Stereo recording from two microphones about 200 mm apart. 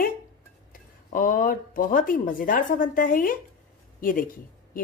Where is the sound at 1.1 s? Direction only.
45° left (ahead or behind).